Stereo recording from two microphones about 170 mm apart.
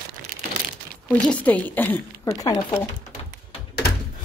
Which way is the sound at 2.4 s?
20° left (ahead or behind).